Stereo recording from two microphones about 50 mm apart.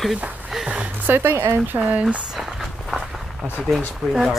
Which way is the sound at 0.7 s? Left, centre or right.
Right.